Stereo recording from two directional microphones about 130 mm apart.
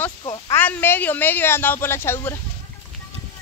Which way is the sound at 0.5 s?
15° left (ahead or behind).